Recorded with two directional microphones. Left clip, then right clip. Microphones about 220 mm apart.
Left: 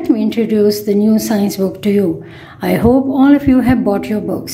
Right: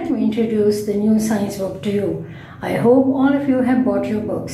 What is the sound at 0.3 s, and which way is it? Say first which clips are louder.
Speech: left 1 dB; 45° left (ahead or behind).